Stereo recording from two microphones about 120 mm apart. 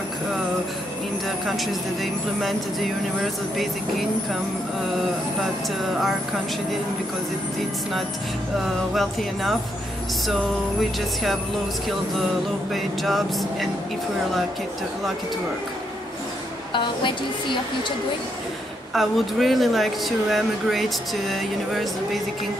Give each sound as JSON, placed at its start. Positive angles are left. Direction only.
{"t": 8.9, "sound": "speech", "side_deg": 0}
{"t": 12.7, "sound": "speech", "side_deg": 0}
{"t": 16.7, "sound": "a woman's voice", "side_deg": 40}
{"t": 18.9, "sound": "speech", "side_deg": 0}